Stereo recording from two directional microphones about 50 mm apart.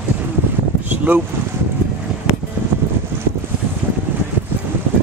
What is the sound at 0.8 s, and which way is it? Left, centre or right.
Boat, right.